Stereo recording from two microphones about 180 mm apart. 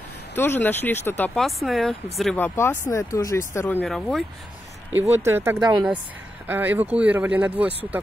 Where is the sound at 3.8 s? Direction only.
Centre (ahead or behind).